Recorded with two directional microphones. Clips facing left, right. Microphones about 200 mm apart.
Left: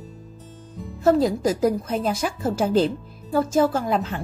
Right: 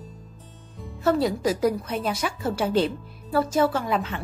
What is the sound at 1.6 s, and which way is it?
Speech, 30° left (ahead or behind).